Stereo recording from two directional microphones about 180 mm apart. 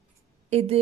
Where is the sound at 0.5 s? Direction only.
35° right (ahead or behind).